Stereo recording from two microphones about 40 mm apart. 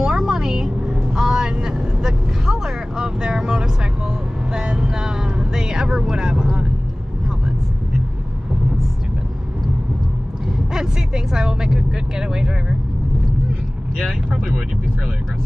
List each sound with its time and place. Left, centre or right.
0.0 s vehicle: centre
4.5 s music: centre
5.7 s vehicle: centre
10.7 s vehicle: centre